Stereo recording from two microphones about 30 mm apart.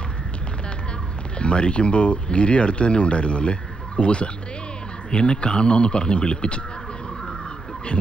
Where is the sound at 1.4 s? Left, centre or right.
Left.